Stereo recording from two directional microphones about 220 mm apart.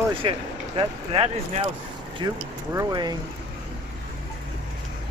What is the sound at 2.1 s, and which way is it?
Speech, 15° right (ahead or behind).